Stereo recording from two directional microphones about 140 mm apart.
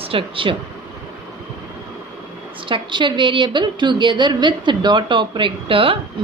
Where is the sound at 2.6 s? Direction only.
35° right (ahead or behind).